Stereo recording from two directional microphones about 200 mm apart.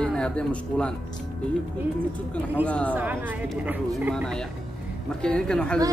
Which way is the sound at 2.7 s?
5° left (ahead or behind).